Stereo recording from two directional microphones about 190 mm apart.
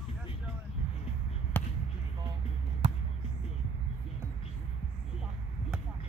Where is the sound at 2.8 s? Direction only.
35° right (ahead or behind).